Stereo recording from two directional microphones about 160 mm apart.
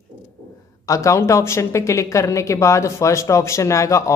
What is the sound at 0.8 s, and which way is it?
Speech, 20° left (ahead or behind).